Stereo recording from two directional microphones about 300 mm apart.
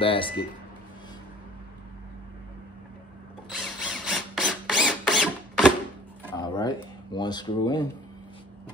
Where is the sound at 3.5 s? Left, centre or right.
Centre.